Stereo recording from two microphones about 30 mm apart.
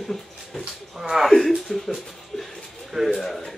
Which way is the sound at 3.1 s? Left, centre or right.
Centre.